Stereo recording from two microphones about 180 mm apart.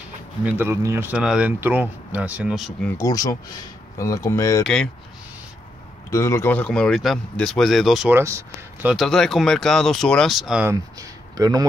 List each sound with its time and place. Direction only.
0.5 s speech: 10° right (ahead or behind)
3.0 s speech: 20° left (ahead or behind)
6.0 s speech: 15° left (ahead or behind); by 8.1 s centre (ahead or behind)
8.1 s speech: 15° right (ahead or behind)
8.9 s speech: centre (ahead or behind)
10.7 s speech: 20° right (ahead or behind)